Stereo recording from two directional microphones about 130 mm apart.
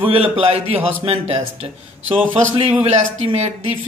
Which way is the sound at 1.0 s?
50° right (ahead or behind).